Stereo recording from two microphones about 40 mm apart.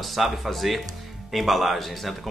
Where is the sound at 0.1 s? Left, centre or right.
Centre.